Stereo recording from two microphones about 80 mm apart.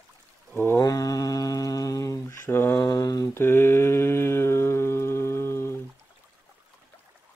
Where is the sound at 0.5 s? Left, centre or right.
Left.